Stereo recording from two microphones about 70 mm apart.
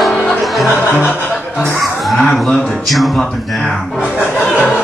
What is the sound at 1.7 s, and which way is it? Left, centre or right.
Speech, centre.